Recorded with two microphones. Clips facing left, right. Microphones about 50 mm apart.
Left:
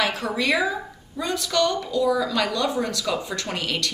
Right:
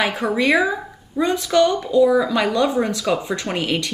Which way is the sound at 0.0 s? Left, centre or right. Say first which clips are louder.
Right 5 dB; centre.